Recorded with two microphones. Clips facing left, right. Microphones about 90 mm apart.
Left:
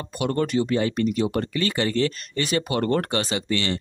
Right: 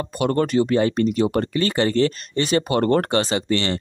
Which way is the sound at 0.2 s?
45° right (ahead or behind).